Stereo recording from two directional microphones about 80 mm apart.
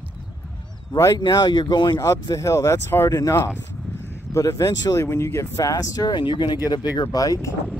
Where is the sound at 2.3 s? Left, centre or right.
Left.